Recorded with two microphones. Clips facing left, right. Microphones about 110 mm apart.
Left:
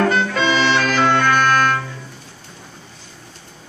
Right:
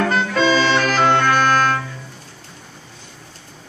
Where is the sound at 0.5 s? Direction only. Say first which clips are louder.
Right 1 dB; 35° right (ahead or behind).